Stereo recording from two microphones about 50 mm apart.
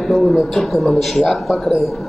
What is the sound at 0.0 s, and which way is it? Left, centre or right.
A man's voice, centre.